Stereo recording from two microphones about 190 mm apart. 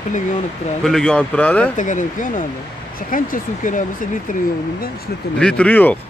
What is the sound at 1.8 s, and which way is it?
Speech, 40° left (ahead or behind).